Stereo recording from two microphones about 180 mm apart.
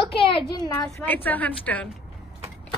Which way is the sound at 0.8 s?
10° left (ahead or behind).